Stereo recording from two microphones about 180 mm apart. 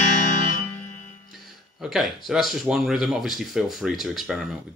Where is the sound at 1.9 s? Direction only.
Centre (ahead or behind).